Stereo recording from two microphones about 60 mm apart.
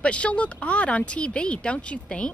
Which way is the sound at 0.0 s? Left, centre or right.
Centre.